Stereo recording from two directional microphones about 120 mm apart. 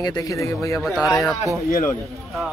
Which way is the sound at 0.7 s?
Centre (ahead or behind).